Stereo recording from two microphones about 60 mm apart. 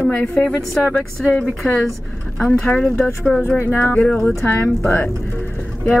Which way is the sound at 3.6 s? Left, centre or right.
Left.